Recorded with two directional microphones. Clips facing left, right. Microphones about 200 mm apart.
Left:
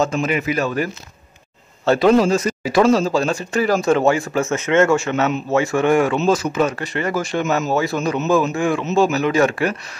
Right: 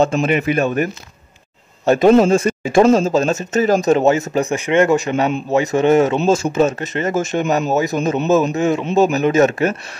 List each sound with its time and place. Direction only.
0.0 s speech: 30° right (ahead or behind)
1.9 s speech: 20° right (ahead or behind)